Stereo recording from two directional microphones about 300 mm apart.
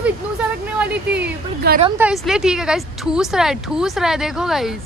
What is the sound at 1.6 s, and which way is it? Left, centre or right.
Speech, right.